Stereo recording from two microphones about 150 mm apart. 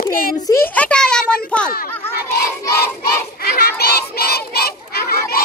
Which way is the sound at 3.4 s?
90° left.